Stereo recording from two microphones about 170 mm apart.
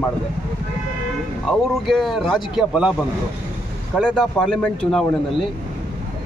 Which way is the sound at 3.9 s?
Centre (ahead or behind).